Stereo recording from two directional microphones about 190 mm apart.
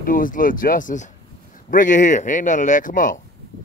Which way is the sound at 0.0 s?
45° left (ahead or behind).